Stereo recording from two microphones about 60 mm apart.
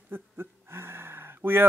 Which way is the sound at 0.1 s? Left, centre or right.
Right.